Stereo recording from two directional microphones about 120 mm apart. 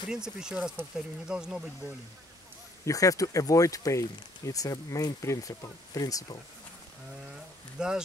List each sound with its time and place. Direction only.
0.1 s speech: 5° right (ahead or behind)
2.8 s speech: 30° left (ahead or behind)
7.8 s speech: 5° right (ahead or behind)